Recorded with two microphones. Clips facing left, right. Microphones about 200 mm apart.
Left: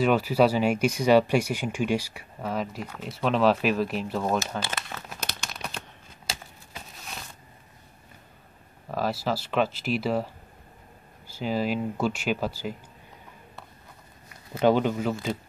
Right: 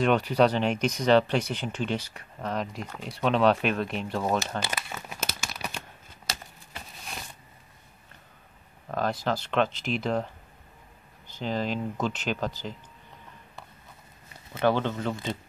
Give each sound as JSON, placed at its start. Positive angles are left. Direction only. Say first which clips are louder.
{"t": 0.0, "sound": "speech", "louder": "left 1 dB", "side_deg": 5}
{"t": 4.7, "sound": "crumpling", "louder": "right 1 dB", "side_deg": -5}
{"t": 8.9, "sound": "speech", "louder": "even", "side_deg": 5}
{"t": 14.6, "sound": "speech", "louder": "left 3 dB", "side_deg": 10}